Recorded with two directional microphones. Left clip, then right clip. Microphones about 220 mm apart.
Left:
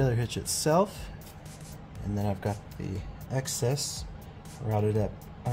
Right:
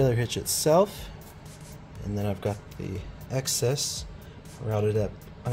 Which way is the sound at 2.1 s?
10° right (ahead or behind).